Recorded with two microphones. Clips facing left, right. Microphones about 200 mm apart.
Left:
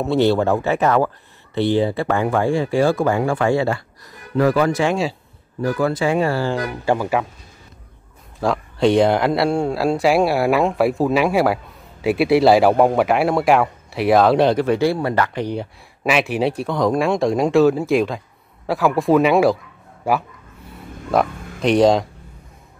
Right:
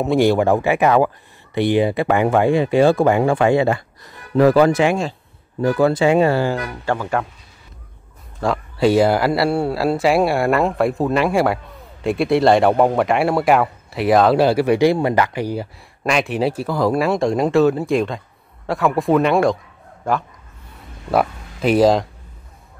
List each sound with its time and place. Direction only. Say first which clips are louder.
0.0 s speech: right 1 dB; 15° right (ahead or behind)
6.9 s speech: left 2 dB; 10° left (ahead or behind)
8.4 s speech: even; centre (ahead or behind)
21.1 s speech: even; 5° right (ahead or behind)